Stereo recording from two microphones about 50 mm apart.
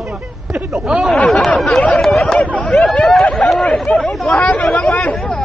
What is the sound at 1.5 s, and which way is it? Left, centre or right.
Speech, centre.